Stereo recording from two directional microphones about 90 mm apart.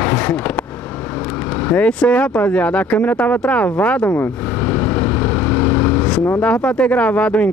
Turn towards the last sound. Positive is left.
turn(degrees=15)  # may be behind; listen again after turning